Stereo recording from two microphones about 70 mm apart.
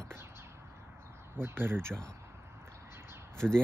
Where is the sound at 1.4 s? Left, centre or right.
Right.